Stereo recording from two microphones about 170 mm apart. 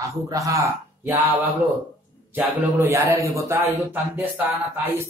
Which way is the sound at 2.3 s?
15° right (ahead or behind).